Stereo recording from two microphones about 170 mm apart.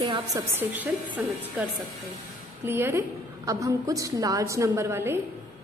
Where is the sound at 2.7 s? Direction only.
15° right (ahead or behind).